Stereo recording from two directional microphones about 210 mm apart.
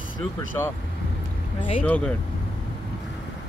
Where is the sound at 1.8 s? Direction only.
5° left (ahead or behind).